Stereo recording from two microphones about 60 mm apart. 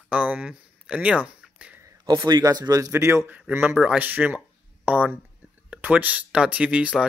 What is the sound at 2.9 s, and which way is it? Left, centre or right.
Speech, right.